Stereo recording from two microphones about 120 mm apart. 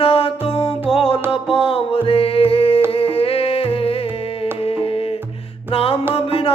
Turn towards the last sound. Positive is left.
turn(degrees=50)  # may be behind; listen again after turning